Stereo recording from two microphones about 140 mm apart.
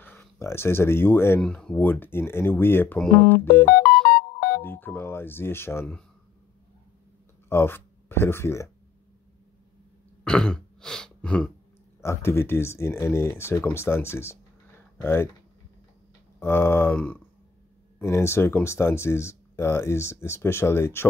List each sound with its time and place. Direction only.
0.0 s speech: 15° left (ahead or behind)
1.4 s speech: 5° left (ahead or behind)
4.1 s music: 85° left
4.6 s speech: 15° left (ahead or behind)
7.4 s speech: 15° left (ahead or behind)
10.2 s throat clearing: 5° left (ahead or behind)
12.0 s speech: 20° left (ahead or behind)
16.3 s speech: 15° left (ahead or behind)